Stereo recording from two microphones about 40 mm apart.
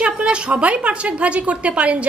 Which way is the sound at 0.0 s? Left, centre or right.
Right.